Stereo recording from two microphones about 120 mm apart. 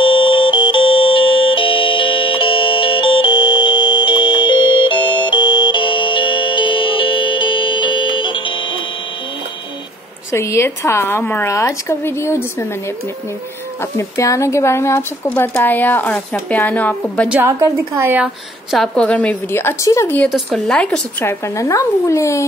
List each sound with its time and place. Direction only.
0.0 s music: 45° left (ahead or behind)
10.3 s a woman's voice: 25° left (ahead or behind)
13.9 s speech: 25° left (ahead or behind)
17.3 s a woman's voice: 20° right (ahead or behind)
18.7 s speech: 5° left (ahead or behind); by 20.2 s 25° left (ahead or behind)
20.2 s speech: centre (ahead or behind); by 22.5 s 25° left (ahead or behind)